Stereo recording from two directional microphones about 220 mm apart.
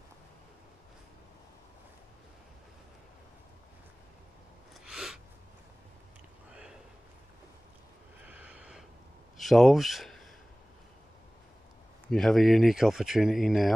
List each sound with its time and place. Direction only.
4.8 s gasp: 5° right (ahead or behind)
8.3 s vehicle: 5° right (ahead or behind)
9.4 s speech: centre (ahead or behind)
12.1 s speech: centre (ahead or behind)